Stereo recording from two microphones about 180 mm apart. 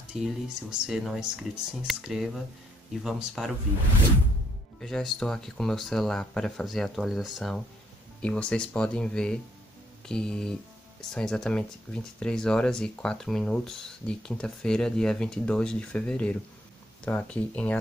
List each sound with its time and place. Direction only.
0.2 s speech: centre (ahead or behind)
4.7 s speech: 5° left (ahead or behind)